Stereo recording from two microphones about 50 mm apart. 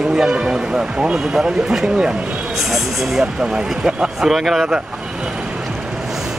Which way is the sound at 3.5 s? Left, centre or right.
Centre.